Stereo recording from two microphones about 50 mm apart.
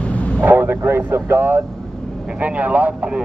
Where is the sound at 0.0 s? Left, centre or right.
Left.